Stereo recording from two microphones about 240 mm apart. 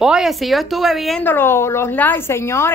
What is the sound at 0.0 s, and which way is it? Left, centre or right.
A woman's voice, centre.